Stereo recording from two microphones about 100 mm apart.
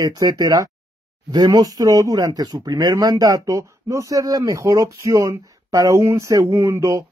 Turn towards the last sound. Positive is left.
turn(degrees=-25)  # may be behind; listen again after turning